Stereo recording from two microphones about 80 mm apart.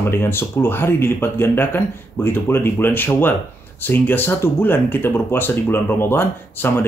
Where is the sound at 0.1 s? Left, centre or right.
Left.